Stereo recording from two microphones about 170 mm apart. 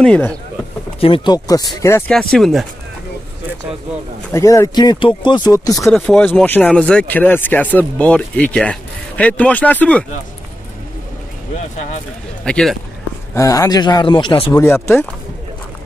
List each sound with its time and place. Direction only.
0.0 s speech: 5° left (ahead or behind)
1.0 s speech: 30° left (ahead or behind); by 2.2 s 10° left (ahead or behind)
2.3 s speech: centre (ahead or behind)
4.3 s speech: 15° left (ahead or behind)
5.8 s speech: centre (ahead or behind)
12.4 s speech: 5° left (ahead or behind)
13.3 s speech: 20° left (ahead or behind)
14.5 s speech: 15° left (ahead or behind)